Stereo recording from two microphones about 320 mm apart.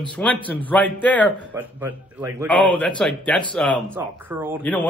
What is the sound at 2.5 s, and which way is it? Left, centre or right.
Speech, centre.